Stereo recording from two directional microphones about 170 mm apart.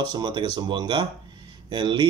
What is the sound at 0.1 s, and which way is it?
Speech, 25° right (ahead or behind).